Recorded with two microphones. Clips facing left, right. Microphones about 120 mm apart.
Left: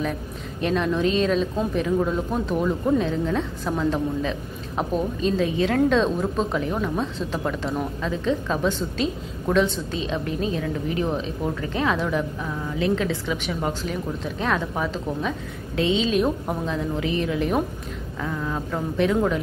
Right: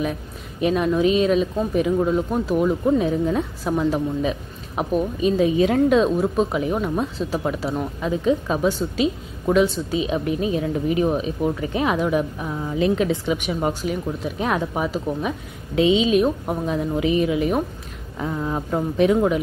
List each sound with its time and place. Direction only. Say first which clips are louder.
0.6 s speech: right 3 dB; 10° right (ahead or behind)
18.2 s speech: right 3 dB; 25° right (ahead or behind)